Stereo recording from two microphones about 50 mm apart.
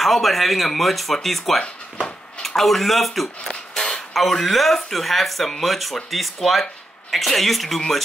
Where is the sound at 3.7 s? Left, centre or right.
Centre.